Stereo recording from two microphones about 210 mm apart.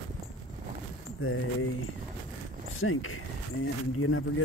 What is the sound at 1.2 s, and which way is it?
Speech, 80° left.